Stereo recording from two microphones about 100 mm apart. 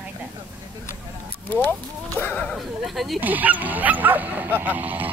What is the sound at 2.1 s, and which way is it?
Speech, 15° left (ahead or behind).